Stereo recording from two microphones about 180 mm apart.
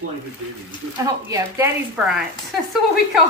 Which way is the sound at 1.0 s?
15° right (ahead or behind).